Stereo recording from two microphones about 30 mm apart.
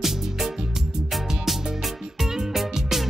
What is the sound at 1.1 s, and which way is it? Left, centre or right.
Music, centre.